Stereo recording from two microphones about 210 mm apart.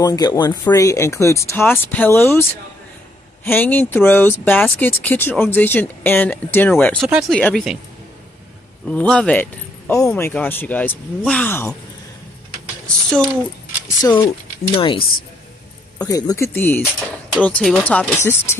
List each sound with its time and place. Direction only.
0.0 s speech: 20° left (ahead or behind)
3.4 s speech: 10° left (ahead or behind)
8.9 s speech: 5° left (ahead or behind)
12.9 s speech: 5° left (ahead or behind)
14.0 s speech: 20° left (ahead or behind)
16.1 s speech: 15° left (ahead or behind)